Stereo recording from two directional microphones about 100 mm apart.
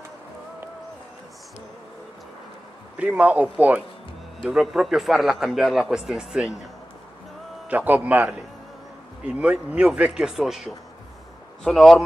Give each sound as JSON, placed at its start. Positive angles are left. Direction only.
{"t": 3.0, "sound": "speech", "side_deg": -15}
{"t": 4.4, "sound": "a man's voice", "side_deg": -5}
{"t": 7.6, "sound": "a man's voice", "side_deg": -15}